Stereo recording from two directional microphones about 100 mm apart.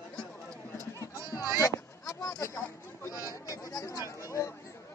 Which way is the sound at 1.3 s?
30° left (ahead or behind).